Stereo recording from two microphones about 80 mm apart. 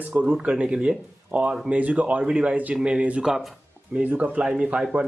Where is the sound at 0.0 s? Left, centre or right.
Centre.